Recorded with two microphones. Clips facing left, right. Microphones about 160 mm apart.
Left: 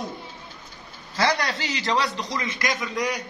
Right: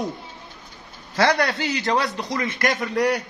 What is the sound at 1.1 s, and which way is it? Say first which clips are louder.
A man's voice: right 4 dB; 65° right (ahead or behind).